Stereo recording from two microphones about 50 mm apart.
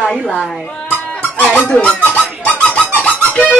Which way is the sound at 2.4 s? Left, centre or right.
Left.